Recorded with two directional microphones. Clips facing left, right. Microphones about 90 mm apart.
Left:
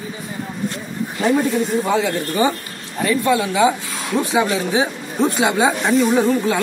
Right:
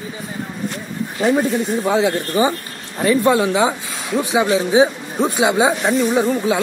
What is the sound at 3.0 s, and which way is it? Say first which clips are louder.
Speech: right 3 dB; 30° right (ahead or behind).